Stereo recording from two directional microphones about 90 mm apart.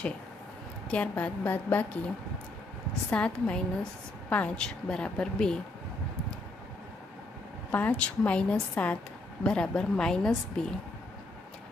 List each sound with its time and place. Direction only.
0.8 s a woman's voice: 15° left (ahead or behind)
3.1 s a woman's voice: 10° left (ahead or behind)
7.7 s a woman's voice: 20° left (ahead or behind)